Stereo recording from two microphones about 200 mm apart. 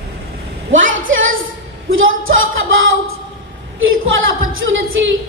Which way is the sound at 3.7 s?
80° right.